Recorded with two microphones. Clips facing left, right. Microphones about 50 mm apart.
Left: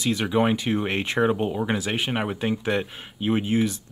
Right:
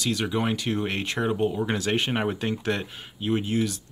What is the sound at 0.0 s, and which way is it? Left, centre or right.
Speech, centre.